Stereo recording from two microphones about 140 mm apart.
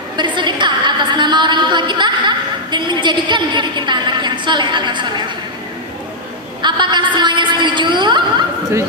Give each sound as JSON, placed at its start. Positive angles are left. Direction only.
{"t": 0.2, "sound": "a woman's voice", "side_deg": -35}
{"t": 6.6, "sound": "a woman's voice", "side_deg": -35}